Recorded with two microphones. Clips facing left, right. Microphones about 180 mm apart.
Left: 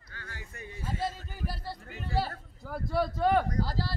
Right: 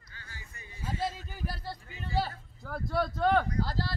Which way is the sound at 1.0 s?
Centre (ahead or behind).